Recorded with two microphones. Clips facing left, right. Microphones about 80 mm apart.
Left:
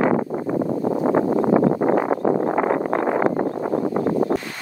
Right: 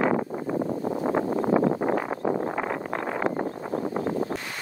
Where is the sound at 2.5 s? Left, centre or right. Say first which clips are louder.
Left 9 dB; left.